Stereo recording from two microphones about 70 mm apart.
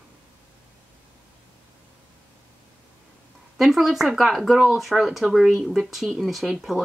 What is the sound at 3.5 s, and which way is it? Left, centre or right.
Speech, centre.